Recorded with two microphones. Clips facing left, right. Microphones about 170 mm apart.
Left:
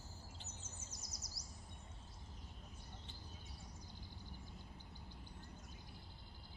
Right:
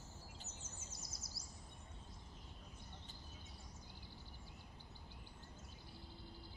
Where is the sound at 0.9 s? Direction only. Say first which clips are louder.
Right 1 dB; 25° right (ahead or behind).